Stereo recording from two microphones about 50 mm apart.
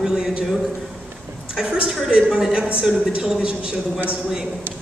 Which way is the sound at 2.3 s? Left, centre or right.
Centre.